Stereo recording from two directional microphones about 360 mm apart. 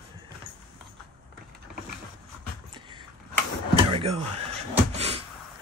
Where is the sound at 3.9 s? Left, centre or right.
Centre.